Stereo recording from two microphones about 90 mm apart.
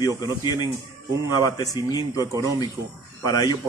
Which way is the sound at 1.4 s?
45° left (ahead or behind).